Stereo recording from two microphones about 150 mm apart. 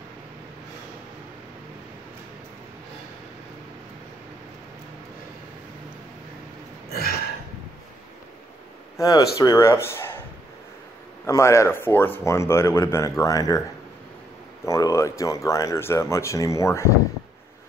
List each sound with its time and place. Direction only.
8.9 s a man's voice: 25° left (ahead or behind)
11.2 s speech: 20° left (ahead or behind)
14.7 s speech: 20° left (ahead or behind)